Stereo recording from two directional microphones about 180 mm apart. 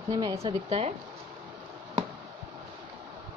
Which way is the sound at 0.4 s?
35° right (ahead or behind).